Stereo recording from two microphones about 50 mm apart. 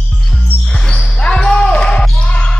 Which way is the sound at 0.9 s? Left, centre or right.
Centre.